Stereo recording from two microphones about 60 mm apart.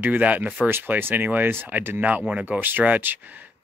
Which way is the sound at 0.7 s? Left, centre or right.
Right.